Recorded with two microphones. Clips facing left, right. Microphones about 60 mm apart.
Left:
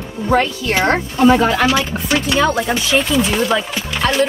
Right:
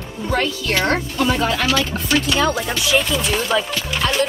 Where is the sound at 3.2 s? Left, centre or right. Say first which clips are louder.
Left 4 dB; centre.